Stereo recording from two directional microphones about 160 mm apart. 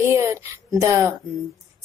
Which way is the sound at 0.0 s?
15° right (ahead or behind).